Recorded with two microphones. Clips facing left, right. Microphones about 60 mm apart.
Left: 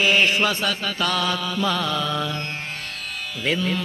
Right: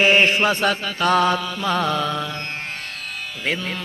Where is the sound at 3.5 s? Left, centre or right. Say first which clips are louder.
Left 2 dB; right.